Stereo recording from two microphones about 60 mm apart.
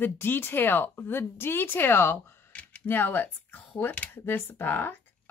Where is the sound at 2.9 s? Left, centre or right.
Left.